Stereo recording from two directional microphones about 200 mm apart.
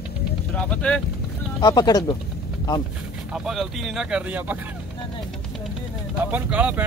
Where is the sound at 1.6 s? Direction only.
20° left (ahead or behind).